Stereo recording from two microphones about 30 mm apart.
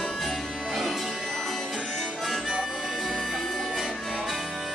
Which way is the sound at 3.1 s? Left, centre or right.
Centre.